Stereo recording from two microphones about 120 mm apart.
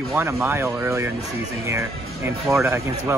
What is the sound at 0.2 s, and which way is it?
Speech, 20° right (ahead or behind).